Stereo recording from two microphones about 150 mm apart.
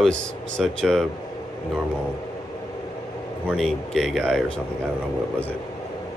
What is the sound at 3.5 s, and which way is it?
A man's voice, centre (ahead or behind).